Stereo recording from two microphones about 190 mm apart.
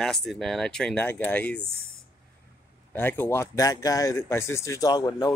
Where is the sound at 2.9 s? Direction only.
10° left (ahead or behind).